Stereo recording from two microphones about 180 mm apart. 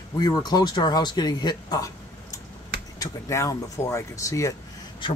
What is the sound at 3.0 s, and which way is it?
Speech, 20° left (ahead or behind).